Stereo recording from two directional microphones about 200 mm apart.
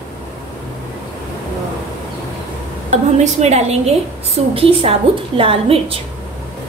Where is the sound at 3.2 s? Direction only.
35° right (ahead or behind).